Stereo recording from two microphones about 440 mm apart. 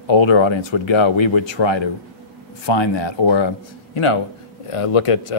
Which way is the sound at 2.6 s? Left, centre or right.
Left.